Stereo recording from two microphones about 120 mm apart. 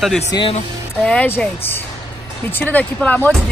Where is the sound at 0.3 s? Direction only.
30° left (ahead or behind).